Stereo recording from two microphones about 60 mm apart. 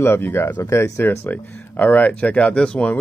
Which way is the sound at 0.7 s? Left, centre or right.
Left.